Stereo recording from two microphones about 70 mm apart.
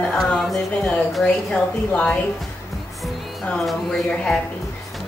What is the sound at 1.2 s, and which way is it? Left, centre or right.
A woman's voice, centre.